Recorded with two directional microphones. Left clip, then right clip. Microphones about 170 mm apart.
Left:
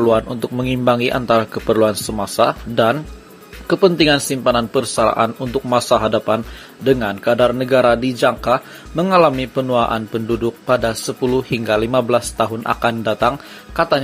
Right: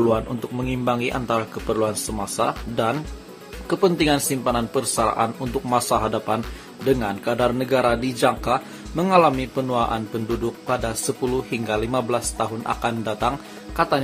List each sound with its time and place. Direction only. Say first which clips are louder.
0.1 s speech: left 6 dB; 30° left (ahead or behind)